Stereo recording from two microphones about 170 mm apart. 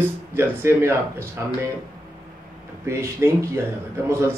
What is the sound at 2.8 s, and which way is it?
Speech, 15° right (ahead or behind).